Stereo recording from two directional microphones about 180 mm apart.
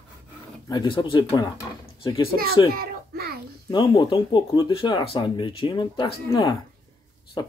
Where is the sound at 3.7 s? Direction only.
25° left (ahead or behind).